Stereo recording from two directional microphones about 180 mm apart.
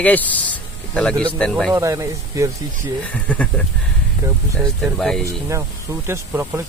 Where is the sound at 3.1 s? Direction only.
5° left (ahead or behind).